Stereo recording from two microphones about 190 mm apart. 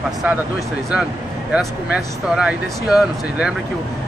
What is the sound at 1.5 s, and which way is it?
Speech, 5° right (ahead or behind).